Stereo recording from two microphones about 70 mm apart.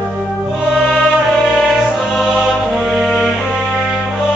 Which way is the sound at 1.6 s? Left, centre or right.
Centre.